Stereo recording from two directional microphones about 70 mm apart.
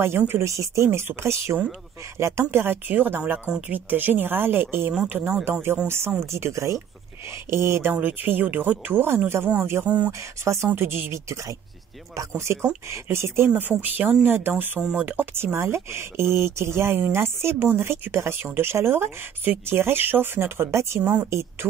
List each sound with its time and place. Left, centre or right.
0.4 s speech: right
9.8 s speech: centre
10.4 s speech: right
13.6 s speech: right
14.8 s speech: centre
15.0 s speech: right
21.0 s speech: right
21.3 s speech: right